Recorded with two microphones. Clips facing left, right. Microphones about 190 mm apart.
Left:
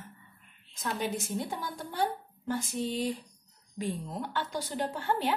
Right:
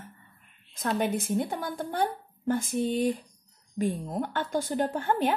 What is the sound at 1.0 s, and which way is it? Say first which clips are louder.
Speech: right 5 dB; 55° right (ahead or behind).